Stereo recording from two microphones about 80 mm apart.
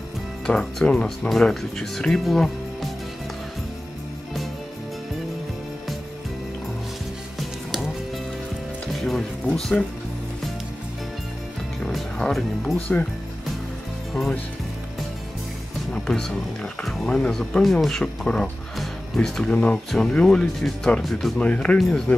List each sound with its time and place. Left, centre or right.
0.5 s speech: centre
9.0 s music: centre
11.8 s music: centre
12.7 s speech: centre
15.9 s speech: centre
21.4 s speech: centre
21.7 s speech: centre